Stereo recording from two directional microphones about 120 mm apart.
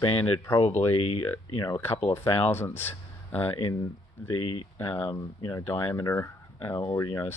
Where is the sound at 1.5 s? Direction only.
30° left (ahead or behind).